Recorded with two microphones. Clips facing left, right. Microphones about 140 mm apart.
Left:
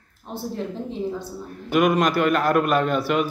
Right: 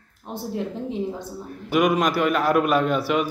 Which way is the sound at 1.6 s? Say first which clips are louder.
Left 1 dB; 5° right (ahead or behind).